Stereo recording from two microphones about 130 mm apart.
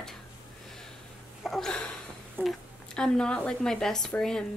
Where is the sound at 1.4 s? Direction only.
5° left (ahead or behind).